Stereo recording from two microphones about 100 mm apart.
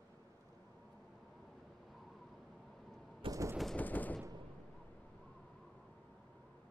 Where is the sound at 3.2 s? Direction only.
65° right (ahead or behind).